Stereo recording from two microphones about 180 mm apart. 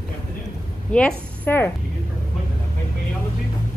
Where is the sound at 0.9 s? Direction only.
5° left (ahead or behind).